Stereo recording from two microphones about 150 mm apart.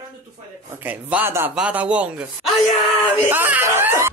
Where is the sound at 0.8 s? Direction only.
10° right (ahead or behind).